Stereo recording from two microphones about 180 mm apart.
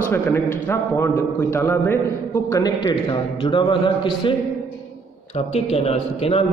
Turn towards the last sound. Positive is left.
turn(degrees=35)  # may be behind; listen again after turning